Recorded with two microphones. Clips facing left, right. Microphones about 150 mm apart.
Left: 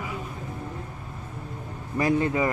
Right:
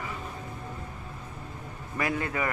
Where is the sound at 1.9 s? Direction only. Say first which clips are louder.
Left 7 dB; 25° left (ahead or behind).